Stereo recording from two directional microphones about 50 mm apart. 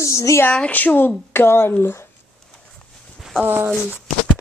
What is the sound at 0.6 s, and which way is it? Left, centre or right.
Speech, left.